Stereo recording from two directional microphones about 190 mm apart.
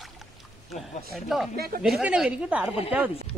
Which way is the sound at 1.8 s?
5° right (ahead or behind).